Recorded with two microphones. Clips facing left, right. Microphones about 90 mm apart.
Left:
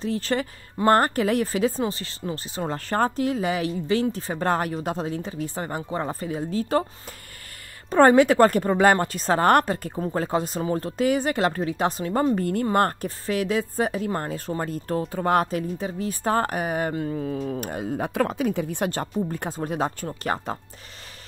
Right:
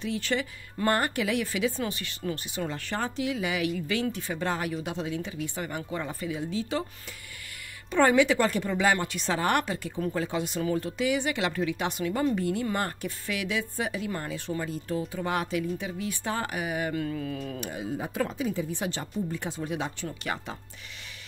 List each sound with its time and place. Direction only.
0.0 s speech: 35° left (ahead or behind)
7.9 s speech: 40° left (ahead or behind)
13.3 s speech: 40° left (ahead or behind)
16.9 s mantra: 30° left (ahead or behind)
17.6 s speech: 50° left (ahead or behind)